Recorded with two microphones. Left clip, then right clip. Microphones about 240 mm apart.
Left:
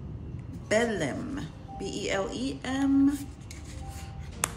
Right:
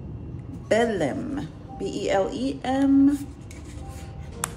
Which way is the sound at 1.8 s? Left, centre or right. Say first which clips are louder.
Right 5 dB; centre.